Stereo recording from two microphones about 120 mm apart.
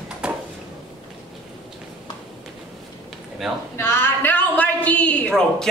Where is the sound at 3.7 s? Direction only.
20° left (ahead or behind).